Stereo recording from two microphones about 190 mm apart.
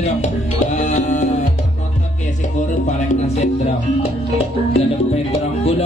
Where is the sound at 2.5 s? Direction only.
40° left (ahead or behind).